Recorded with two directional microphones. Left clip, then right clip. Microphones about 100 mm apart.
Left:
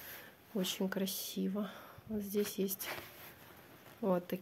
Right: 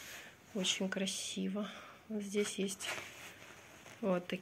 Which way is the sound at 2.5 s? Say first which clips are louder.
Left 1 dB; 90° left.